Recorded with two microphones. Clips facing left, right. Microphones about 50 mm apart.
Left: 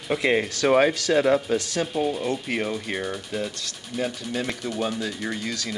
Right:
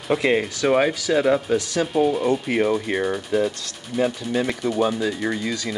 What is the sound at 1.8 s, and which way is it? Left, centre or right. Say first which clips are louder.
Speech: right 5 dB; right.